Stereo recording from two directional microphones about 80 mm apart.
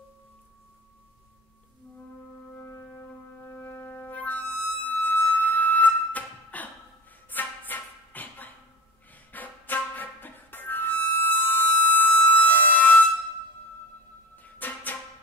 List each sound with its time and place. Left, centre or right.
3.4 s music: left
14.3 s music: left